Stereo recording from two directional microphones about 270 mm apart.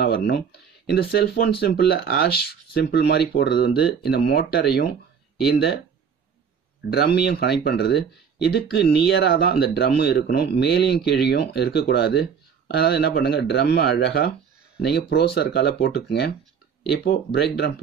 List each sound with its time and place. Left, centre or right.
0.0 s speech: left
6.9 s speech: left